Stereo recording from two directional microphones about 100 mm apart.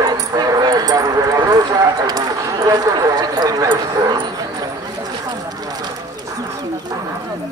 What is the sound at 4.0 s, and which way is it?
Dog, 40° right (ahead or behind).